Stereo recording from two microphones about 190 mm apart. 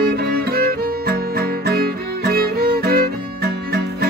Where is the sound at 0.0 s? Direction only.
55° right (ahead or behind).